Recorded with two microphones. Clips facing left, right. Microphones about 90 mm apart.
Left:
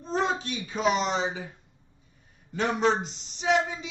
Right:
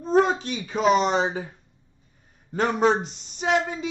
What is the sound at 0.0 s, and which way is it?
Speech, 55° right (ahead or behind).